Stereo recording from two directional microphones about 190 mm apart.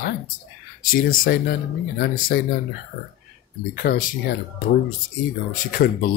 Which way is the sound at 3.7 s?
45° left (ahead or behind).